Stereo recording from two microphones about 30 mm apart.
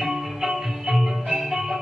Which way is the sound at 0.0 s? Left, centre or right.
Centre.